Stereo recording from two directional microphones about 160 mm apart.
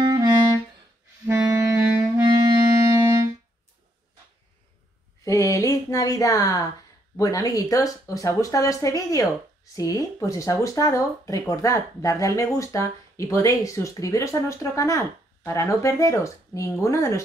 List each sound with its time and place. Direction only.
0.0 s music: 25° right (ahead or behind)
1.2 s clarinet: 15° right (ahead or behind)
2.9 s music: 15° right (ahead or behind)
5.2 s speech: 20° left (ahead or behind)